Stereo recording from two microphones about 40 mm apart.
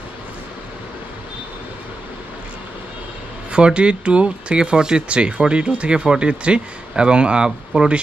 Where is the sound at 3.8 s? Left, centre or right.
Right.